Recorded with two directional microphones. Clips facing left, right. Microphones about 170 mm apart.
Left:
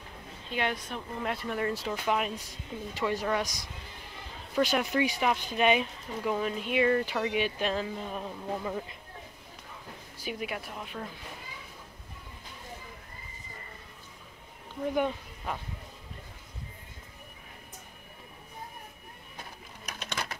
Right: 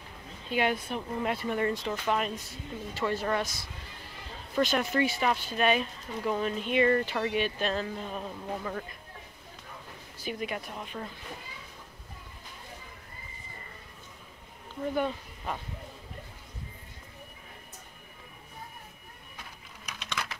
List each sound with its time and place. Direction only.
0.5 s a woman's voice: 5° right (ahead or behind)
10.1 s speech: 10° left (ahead or behind)
19.9 s a sound: 45° left (ahead or behind)